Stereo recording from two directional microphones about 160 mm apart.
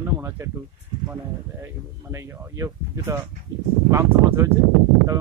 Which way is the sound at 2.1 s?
20° right (ahead or behind).